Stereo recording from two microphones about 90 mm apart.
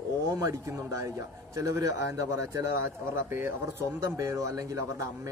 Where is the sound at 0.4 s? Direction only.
35° right (ahead or behind).